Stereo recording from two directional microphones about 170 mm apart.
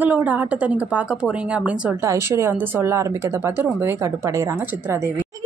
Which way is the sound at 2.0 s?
15° right (ahead or behind).